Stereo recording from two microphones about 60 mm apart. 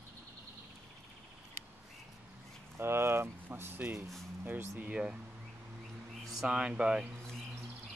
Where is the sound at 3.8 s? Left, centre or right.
Right.